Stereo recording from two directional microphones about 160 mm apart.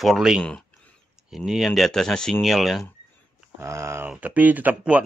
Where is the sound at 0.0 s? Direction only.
Centre (ahead or behind).